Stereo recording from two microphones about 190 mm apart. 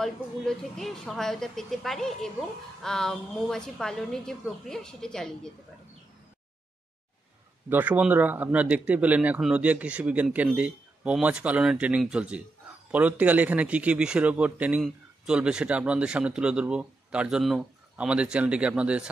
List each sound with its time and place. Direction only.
0.0 s a man's voice: centre (ahead or behind)
7.7 s a man's voice: 10° right (ahead or behind)